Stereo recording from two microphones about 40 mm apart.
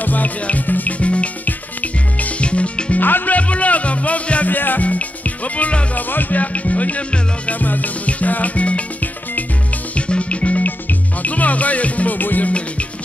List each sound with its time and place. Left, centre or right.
0.0 s music: left
3.0 s music: left
3.3 s music: left
4.6 s music: left
4.8 s music: left
5.9 s music: left
10.6 s music: left